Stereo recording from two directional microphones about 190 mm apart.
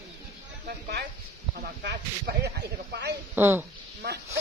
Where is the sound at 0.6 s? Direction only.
60° right (ahead or behind).